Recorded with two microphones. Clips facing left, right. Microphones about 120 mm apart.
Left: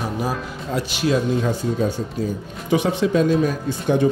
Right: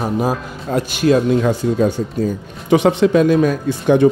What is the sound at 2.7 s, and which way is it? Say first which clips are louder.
Speech: right 6 dB; 70° right (ahead or behind).